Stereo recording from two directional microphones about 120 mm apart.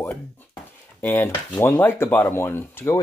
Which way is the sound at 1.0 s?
20° left (ahead or behind).